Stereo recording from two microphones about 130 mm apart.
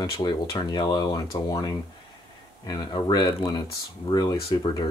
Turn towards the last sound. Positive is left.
turn(degrees=30)  # may be behind; listen again after turning